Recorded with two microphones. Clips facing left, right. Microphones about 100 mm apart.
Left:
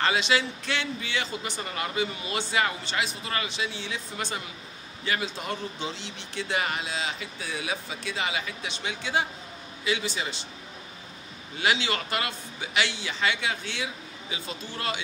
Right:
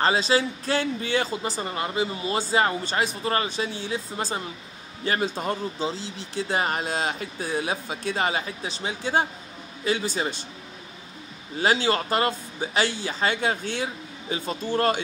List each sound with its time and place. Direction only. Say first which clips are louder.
0.0 s a man's voice: right 3 dB; 35° right (ahead or behind)
11.5 s a man's voice: right 5 dB; 40° right (ahead or behind)